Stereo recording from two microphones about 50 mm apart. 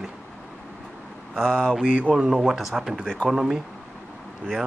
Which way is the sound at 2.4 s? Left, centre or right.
Centre.